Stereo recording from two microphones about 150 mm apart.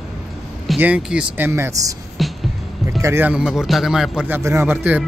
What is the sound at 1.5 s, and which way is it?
Speech, 20° right (ahead or behind).